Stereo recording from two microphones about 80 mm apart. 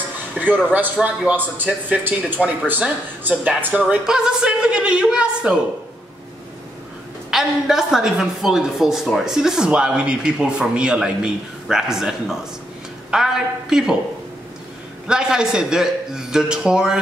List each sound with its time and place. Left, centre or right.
0.3 s speech: right
4.0 s speech: centre
7.2 s a woman's voice: centre
15.0 s speech: centre